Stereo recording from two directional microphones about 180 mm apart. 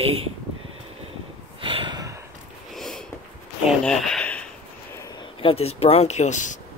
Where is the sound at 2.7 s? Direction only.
Centre (ahead or behind).